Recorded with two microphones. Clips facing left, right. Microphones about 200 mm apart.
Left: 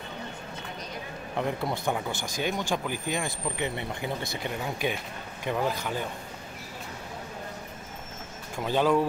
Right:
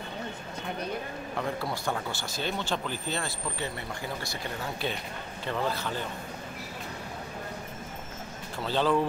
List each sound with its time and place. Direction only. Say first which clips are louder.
1.3 s speech: left 3 dB; 20° left (ahead or behind)
8.5 s speech: left 2 dB; 15° left (ahead or behind)